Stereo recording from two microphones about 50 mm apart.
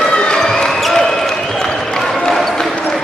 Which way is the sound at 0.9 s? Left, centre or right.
Centre.